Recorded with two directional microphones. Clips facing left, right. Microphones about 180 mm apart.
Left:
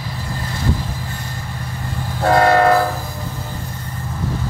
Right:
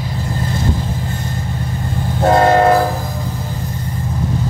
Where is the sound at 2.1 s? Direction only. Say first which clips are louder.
Right 2 dB; 20° right (ahead or behind).